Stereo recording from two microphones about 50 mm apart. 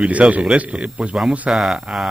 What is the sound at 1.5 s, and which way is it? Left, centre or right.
Speech, centre.